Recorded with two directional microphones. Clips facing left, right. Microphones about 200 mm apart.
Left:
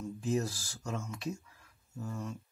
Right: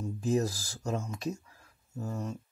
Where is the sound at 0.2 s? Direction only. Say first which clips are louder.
Right 4 dB; 40° right (ahead or behind).